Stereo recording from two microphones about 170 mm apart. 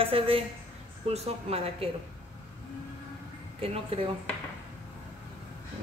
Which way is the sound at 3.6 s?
35° right (ahead or behind).